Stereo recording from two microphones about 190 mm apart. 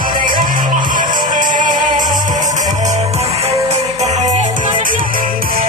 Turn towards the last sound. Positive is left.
turn(degrees=-50)  # may be behind; listen again after turning